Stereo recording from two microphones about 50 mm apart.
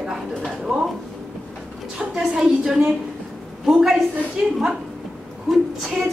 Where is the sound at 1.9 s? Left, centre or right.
Centre.